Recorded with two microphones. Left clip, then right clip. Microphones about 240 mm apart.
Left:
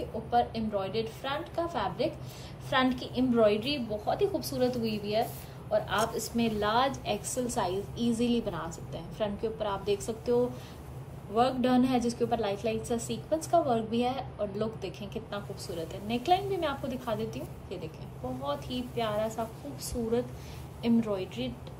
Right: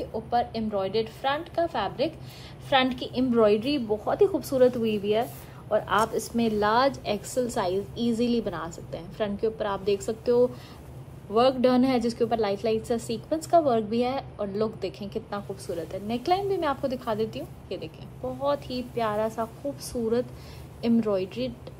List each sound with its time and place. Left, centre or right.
0.3 s a woman's voice: right